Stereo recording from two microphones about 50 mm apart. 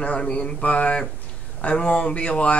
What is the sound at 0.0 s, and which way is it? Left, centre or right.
Speech, left.